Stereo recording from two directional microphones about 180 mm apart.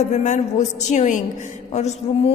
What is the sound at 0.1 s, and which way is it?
A woman's voice, 40° left (ahead or behind).